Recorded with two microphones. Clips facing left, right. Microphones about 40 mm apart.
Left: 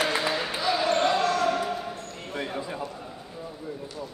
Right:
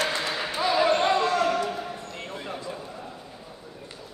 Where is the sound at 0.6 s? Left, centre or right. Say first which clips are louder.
Right 3 dB; centre.